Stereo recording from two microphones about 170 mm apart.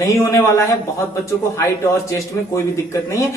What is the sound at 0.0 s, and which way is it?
A man's voice, 15° left (ahead or behind).